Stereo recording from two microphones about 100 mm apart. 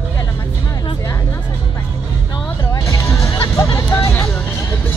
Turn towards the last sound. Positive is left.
turn(degrees=30)  # may be behind; listen again after turning